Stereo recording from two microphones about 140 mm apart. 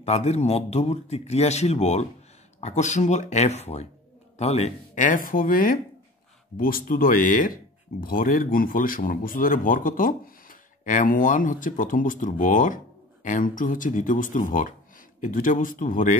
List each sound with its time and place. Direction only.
0.0 s a man's voice: 50° left (ahead or behind); by 7.5 s 70° left (ahead or behind)
8.0 s speech: 85° left; by 16.2 s 70° left (ahead or behind)